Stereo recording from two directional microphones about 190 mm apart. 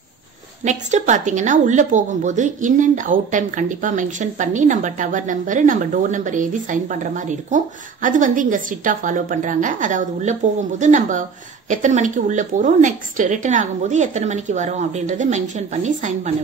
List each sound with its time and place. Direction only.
0.7 s a woman's voice: 40° right (ahead or behind)